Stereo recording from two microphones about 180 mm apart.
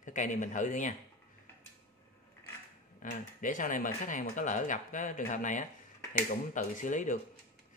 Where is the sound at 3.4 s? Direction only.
50° left (ahead or behind).